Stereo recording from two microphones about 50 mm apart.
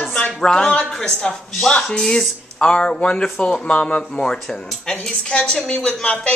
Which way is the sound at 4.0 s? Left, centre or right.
Centre.